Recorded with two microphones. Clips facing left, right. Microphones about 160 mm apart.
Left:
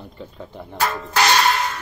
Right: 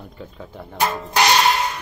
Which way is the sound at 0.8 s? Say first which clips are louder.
Right 1 dB; 15° right (ahead or behind).